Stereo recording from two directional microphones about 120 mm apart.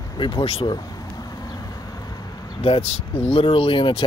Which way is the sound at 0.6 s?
35° left (ahead or behind).